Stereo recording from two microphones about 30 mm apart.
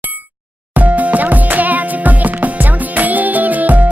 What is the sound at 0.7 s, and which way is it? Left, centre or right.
Music, right.